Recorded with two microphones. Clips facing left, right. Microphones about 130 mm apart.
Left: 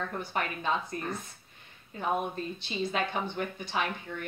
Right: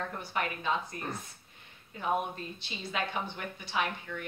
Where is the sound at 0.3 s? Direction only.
35° left (ahead or behind).